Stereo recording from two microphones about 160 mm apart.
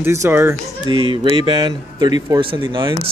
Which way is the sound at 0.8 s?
30° right (ahead or behind).